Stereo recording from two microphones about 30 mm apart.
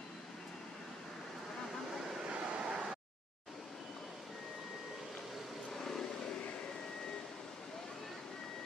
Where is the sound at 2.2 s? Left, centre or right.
Right.